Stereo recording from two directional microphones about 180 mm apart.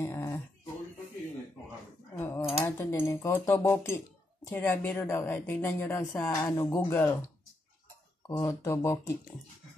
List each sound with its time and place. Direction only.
0.0 s a sound: 15° left (ahead or behind)
2.1 s dishes: 10° left (ahead or behind)
2.6 s speech: 15° left (ahead or behind)
8.3 s speech: 15° left (ahead or behind)